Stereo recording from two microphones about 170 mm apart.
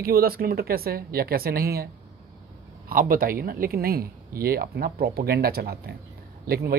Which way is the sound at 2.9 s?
55° right (ahead or behind).